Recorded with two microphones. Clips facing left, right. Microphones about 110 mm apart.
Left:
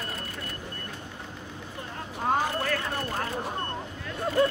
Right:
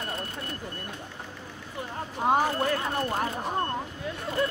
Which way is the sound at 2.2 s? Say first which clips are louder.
Right 3 dB; 15° right (ahead or behind).